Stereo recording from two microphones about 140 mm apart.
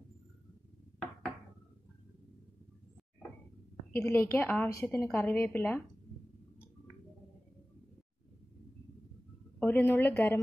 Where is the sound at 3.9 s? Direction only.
15° left (ahead or behind).